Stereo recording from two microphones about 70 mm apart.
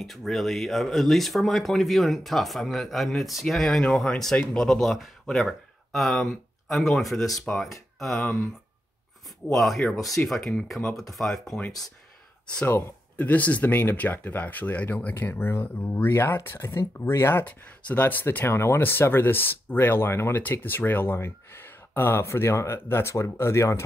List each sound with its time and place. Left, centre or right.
0.0 s speech: centre
8.1 s speech: left
9.5 s speech: centre
13.1 s speech: left
15.1 s speech: left